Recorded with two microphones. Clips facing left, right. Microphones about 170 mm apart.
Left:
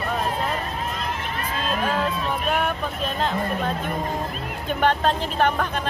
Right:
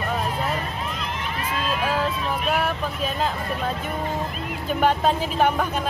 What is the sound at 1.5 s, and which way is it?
Speech, 40° left (ahead or behind).